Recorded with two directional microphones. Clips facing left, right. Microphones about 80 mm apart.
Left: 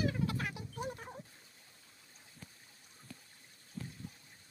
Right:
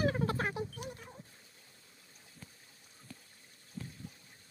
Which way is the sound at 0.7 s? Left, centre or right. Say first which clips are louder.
Left 4 dB; left.